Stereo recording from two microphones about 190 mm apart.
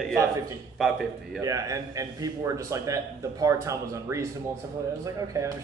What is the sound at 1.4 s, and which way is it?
A man's voice, 20° right (ahead or behind).